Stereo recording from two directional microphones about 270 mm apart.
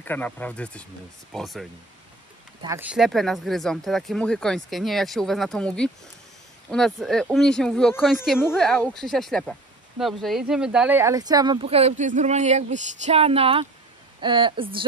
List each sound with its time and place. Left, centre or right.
0.0 s speech: centre